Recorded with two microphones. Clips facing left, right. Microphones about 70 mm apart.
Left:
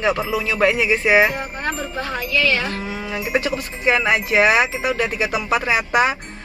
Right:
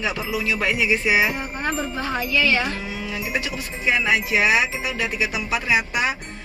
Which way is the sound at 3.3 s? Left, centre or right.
Left.